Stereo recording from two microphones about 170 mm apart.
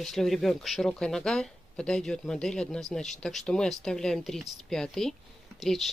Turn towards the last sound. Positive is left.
turn(degrees=0)  # may be behind; listen again after turning